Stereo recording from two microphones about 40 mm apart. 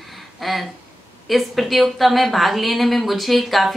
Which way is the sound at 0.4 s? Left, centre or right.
Centre.